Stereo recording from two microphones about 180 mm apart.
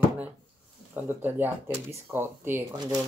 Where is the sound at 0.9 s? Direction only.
10° right (ahead or behind).